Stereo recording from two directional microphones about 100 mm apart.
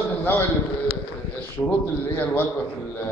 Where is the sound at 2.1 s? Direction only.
20° left (ahead or behind).